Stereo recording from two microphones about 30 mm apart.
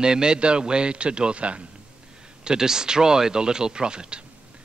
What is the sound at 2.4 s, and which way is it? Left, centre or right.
A man's voice, right.